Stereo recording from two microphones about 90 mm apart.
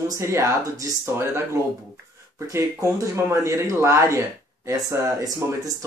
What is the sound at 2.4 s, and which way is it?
Speech, 35° right (ahead or behind).